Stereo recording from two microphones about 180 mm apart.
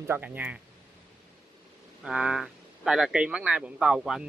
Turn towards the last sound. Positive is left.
turn(degrees=-5)  # may be behind; listen again after turning